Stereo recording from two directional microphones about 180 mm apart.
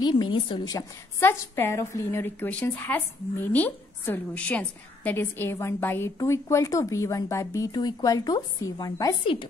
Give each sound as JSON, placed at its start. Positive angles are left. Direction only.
{"t": 0.0, "sound": "a woman's voice", "side_deg": 25}